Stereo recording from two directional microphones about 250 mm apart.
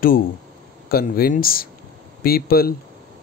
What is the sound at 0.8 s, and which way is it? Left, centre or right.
Speech, left.